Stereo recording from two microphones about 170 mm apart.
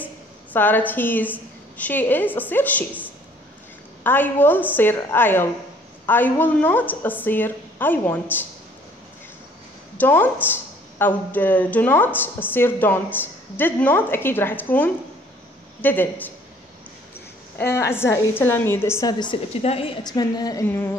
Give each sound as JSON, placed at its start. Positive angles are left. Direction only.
{"t": 0.0, "sound": "a woman's voice", "side_deg": 10}
{"t": 9.9, "sound": "a woman's voice", "side_deg": 10}
{"t": 17.6, "sound": "a woman's voice", "side_deg": 15}